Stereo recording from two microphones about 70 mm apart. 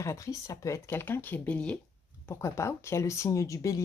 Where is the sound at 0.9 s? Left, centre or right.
Left.